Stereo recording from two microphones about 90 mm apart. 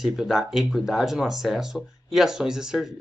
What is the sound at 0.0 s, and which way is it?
Speech, 5° right (ahead or behind).